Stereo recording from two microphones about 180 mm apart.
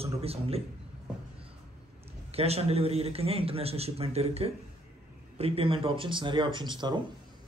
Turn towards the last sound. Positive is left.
turn(degrees=-25)  # may be behind; listen again after turning